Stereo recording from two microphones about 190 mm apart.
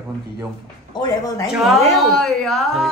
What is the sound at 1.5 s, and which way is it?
Speech, centre (ahead or behind).